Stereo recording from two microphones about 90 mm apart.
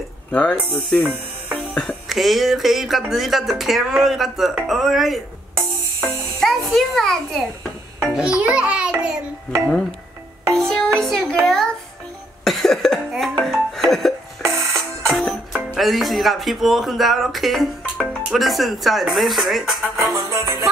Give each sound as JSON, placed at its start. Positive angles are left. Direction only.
{"t": 0.3, "sound": "speech", "side_deg": 15}
{"t": 2.0, "sound": "speech", "side_deg": 0}
{"t": 6.0, "sound": "music", "side_deg": 0}
{"t": 8.1, "sound": "a child's voice", "side_deg": -10}
{"t": 10.5, "sound": "a child's voice", "side_deg": 5}
{"t": 11.4, "sound": "music", "side_deg": 5}
{"t": 12.4, "sound": "cough", "side_deg": 5}
{"t": 13.4, "sound": "music", "side_deg": 5}
{"t": 14.4, "sound": "music", "side_deg": -35}
{"t": 15.0, "sound": "music", "side_deg": 5}
{"t": 15.5, "sound": "speech", "side_deg": 0}
{"t": 20.1, "sound": "music", "side_deg": -35}